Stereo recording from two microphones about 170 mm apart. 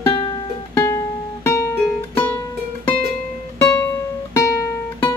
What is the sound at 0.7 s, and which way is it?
Music, 15° left (ahead or behind).